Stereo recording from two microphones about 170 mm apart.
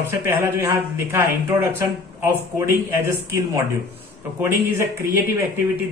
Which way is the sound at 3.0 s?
20° right (ahead or behind).